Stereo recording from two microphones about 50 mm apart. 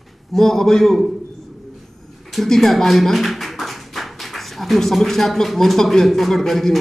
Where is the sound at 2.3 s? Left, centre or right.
Centre.